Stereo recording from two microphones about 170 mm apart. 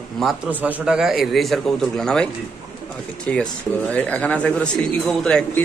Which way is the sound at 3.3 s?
10° left (ahead or behind).